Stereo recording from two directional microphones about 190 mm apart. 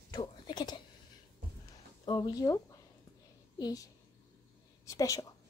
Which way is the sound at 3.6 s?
20° left (ahead or behind).